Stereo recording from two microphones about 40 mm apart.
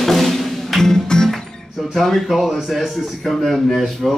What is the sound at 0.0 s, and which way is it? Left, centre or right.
Music, centre.